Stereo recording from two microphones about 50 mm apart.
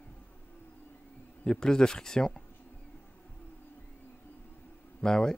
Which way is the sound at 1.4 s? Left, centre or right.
Centre.